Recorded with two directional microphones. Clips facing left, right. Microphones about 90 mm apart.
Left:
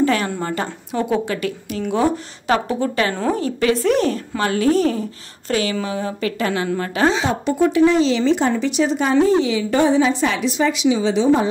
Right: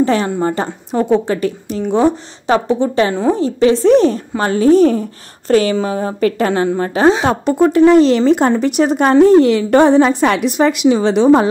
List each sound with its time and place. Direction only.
0.0 s a woman's voice: 30° right (ahead or behind); by 11.4 s 60° right (ahead or behind)